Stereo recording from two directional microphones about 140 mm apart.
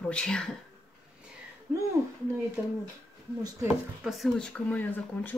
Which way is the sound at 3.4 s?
30° right (ahead or behind).